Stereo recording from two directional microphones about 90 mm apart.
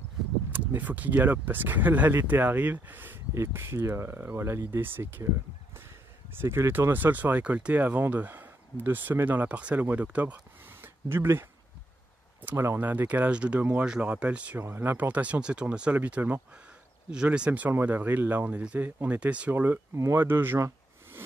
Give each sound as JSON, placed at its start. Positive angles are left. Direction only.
{"t": 0.5, "sound": "speech", "side_deg": -20}
{"t": 6.4, "sound": "speech", "side_deg": -25}
{"t": 12.5, "sound": "speech", "side_deg": -25}
{"t": 17.5, "sound": "speech", "side_deg": -20}
{"t": 19.1, "sound": "speech", "side_deg": -15}